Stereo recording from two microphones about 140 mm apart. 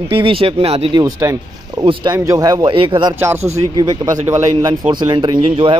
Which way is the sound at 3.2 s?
20° right (ahead or behind).